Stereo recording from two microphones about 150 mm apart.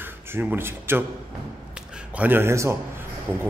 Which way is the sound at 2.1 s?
10° right (ahead or behind).